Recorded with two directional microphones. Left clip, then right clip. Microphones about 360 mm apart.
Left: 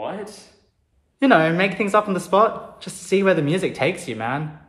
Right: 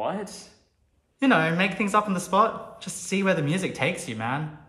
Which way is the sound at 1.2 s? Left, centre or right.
Centre.